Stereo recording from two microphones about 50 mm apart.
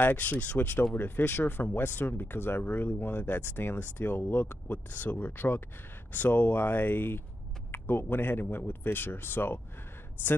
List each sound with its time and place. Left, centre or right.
0.0 s speech: left